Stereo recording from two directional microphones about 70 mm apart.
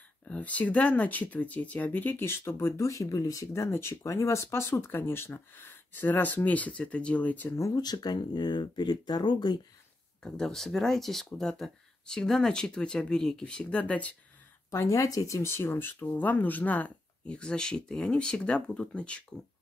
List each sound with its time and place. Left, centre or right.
0.3 s speech: left
7.7 s speech: left
10.2 s speech: centre
14.9 s speech: left; by 19.2 s centre